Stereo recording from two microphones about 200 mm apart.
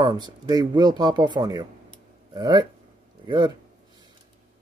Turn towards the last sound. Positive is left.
turn(degrees=-20)  # may be behind; listen again after turning